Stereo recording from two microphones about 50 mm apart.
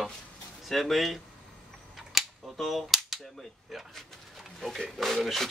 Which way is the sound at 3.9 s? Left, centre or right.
Centre.